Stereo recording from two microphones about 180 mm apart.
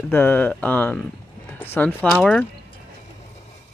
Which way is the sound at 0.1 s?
10° left (ahead or behind).